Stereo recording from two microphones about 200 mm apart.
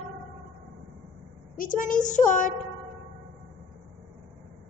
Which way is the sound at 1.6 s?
40° left (ahead or behind).